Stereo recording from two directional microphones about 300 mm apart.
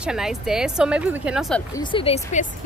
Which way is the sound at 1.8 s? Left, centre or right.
Centre.